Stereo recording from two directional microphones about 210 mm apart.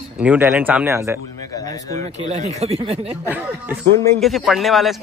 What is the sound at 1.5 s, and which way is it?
Speech, 15° left (ahead or behind).